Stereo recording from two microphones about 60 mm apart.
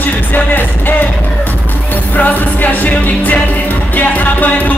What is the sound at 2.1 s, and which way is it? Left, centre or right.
Speech, left.